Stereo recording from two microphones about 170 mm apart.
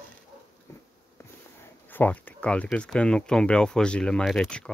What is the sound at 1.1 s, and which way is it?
Speech, 15° left (ahead or behind).